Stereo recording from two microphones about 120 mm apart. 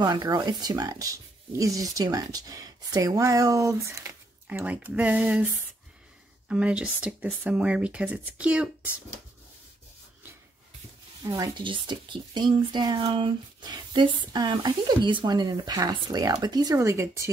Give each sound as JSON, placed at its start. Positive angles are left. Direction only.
{"t": 0.0, "sound": "speech", "side_deg": -30}
{"t": 4.5, "sound": "speech", "side_deg": -10}
{"t": 11.2, "sound": "speech", "side_deg": -30}
{"t": 11.6, "sound": "speech", "side_deg": -45}